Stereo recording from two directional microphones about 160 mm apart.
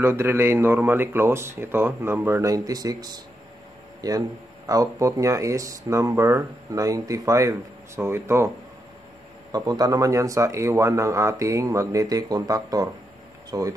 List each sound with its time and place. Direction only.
0.0 s speech: 15° right (ahead or behind)
9.5 s speech: 25° right (ahead or behind)